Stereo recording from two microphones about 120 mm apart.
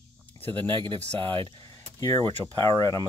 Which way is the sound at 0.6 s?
40° right (ahead or behind).